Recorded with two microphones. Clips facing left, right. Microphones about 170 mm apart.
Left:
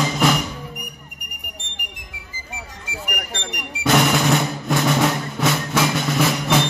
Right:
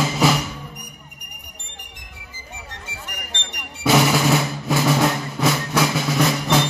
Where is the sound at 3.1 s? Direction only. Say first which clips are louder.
Left 9 dB; 55° left (ahead or behind).